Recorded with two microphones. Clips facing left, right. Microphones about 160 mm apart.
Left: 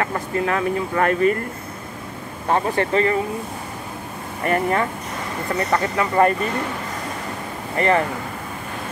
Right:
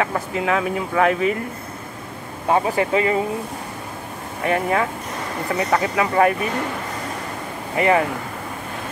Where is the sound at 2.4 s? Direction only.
10° right (ahead or behind).